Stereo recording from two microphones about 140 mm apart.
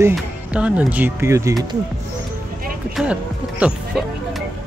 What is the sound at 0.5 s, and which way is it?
Speech, 10° right (ahead or behind).